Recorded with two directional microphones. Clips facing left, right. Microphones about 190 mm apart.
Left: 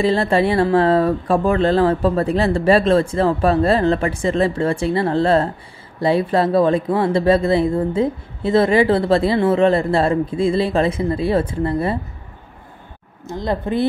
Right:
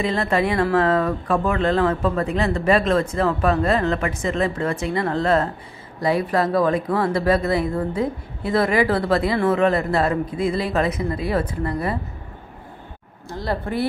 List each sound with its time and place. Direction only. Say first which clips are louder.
0.0 s speech: left 5 dB; 30° left (ahead or behind)
13.3 s speech: left 4 dB; 20° left (ahead or behind)